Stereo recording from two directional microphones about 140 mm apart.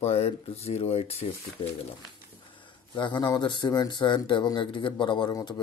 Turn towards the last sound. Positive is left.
turn(degrees=25)  # may be behind; listen again after turning